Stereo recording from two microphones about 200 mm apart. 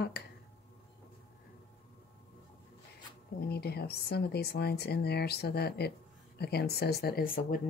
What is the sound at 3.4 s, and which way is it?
Speech, 50° left (ahead or behind).